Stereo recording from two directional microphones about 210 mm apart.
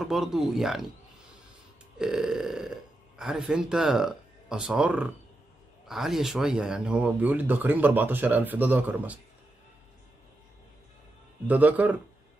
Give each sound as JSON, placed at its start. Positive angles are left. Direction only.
{"t": 0.0, "sound": "speech", "side_deg": 0}
{"t": 2.0, "sound": "speech", "side_deg": -5}
{"t": 11.4, "sound": "speech", "side_deg": -10}